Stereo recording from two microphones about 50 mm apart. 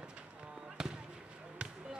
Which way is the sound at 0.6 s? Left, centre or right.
Centre.